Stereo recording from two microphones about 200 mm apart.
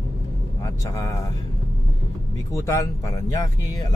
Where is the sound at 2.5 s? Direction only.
15° left (ahead or behind).